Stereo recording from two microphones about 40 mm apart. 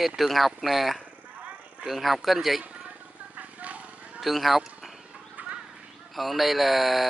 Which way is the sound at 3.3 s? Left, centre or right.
Right.